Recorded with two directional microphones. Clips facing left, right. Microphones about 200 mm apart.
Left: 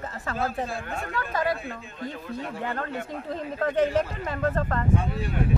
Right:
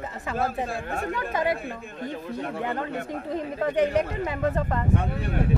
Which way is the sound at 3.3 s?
15° right (ahead or behind).